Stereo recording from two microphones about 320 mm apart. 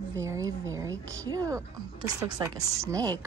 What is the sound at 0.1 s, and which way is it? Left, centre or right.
Speech, centre.